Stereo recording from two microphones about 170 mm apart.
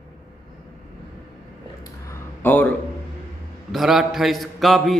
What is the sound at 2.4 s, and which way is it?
Speech, 10° left (ahead or behind).